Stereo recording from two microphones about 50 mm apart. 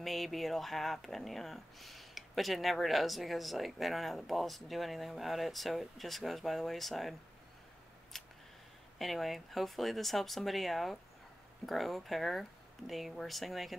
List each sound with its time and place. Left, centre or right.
0.0 s speech: centre
8.1 s scissors: centre
8.9 s speech: centre